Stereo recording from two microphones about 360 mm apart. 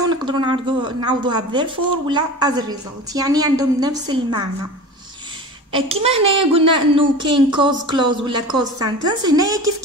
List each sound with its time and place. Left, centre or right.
0.0 s speech: centre
5.7 s speech: centre